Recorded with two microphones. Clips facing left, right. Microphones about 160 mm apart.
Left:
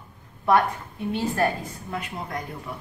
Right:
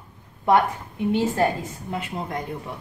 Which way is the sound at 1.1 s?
20° right (ahead or behind).